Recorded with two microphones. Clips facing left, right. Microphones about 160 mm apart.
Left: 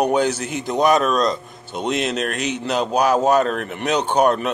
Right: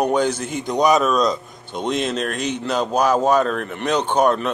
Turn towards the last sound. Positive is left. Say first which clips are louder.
# even
turn(degrees=10)  # may be behind; listen again after turning